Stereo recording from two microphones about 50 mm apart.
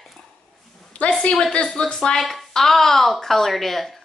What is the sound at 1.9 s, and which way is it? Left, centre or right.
Speech, centre.